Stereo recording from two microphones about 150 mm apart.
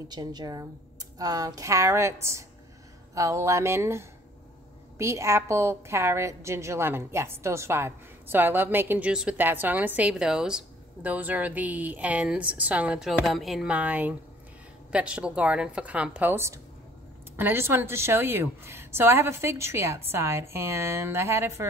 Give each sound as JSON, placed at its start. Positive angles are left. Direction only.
{"t": 0.1, "sound": "a woman's voice", "side_deg": -25}